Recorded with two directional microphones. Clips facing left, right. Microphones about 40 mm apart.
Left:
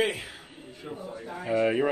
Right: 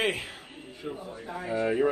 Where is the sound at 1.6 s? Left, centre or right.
Left.